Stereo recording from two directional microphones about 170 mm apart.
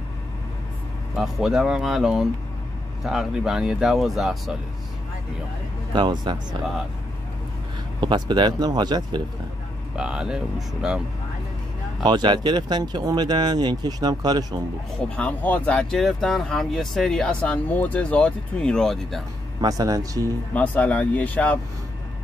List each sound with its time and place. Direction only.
1.1 s speech: centre (ahead or behind)
5.9 s speech: 25° right (ahead or behind)
8.0 s speech: 25° right (ahead or behind)
9.9 s speech: 5° right (ahead or behind)
12.0 s speech: 25° right (ahead or behind)
15.1 s speech: 10° left (ahead or behind)
19.6 s speech: 20° right (ahead or behind)
20.5 s speech: 10° left (ahead or behind)